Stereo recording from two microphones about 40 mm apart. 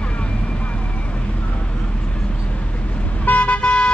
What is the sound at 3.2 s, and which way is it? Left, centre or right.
Vehicle, left.